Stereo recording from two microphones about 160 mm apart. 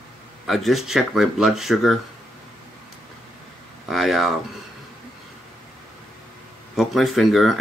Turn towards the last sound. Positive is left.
turn(degrees=0)  # may be behind; listen again after turning